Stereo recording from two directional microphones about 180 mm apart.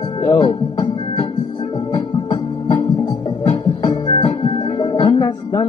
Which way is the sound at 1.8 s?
20° left (ahead or behind).